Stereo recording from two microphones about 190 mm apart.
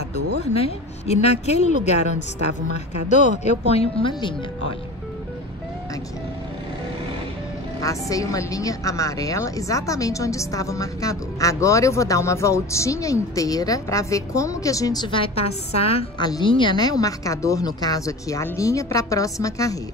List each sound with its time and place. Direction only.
0.4 s a woman's voice: 35° left (ahead or behind)
3.1 s a woman's voice: 40° left (ahead or behind)
7.8 s a woman's voice: 15° left (ahead or behind)